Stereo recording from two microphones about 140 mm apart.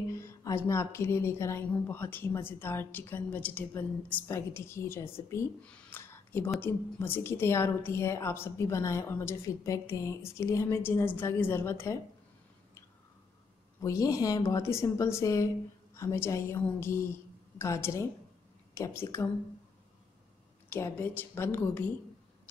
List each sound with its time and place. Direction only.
0.1 s a woman's voice: 25° left (ahead or behind)
5.6 s a sound: 10° left (ahead or behind)
6.6 s a woman's voice: 15° left (ahead or behind)
13.7 s a woman's voice: 25° left (ahead or behind)
20.7 s a woman's voice: 15° left (ahead or behind)